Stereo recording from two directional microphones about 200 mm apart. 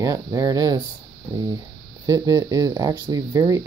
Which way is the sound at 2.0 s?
15° right (ahead or behind).